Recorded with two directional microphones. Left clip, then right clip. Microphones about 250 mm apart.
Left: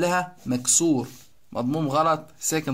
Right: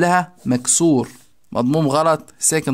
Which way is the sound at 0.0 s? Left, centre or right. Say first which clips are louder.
Right 7 dB; right.